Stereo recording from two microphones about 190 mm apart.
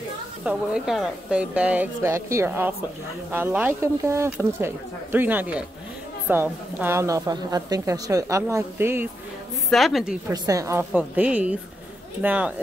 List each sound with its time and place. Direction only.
0.5 s a woman's voice: 5° right (ahead or behind)
9.7 s a woman's voice: centre (ahead or behind)
10.2 s a woman's voice: 20° right (ahead or behind)